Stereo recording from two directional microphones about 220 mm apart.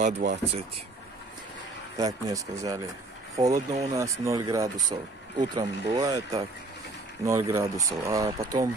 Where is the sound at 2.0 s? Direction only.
15° right (ahead or behind).